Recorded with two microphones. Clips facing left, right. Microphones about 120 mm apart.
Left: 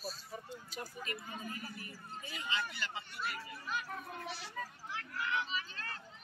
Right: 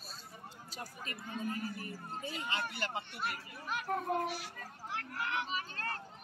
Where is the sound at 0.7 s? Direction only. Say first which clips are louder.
Left 2 dB; 35° right (ahead or behind).